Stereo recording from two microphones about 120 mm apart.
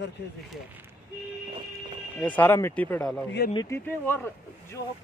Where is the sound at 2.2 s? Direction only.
15° left (ahead or behind).